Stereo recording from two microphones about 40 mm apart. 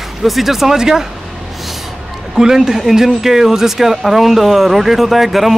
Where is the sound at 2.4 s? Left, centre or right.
Centre.